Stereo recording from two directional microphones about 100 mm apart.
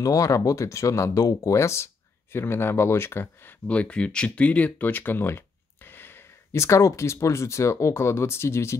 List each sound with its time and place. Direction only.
0.0 s speech: 35° left (ahead or behind)
3.6 s speech: 15° left (ahead or behind)